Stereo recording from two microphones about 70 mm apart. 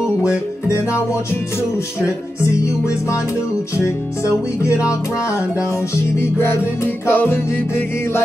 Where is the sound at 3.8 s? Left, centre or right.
Left.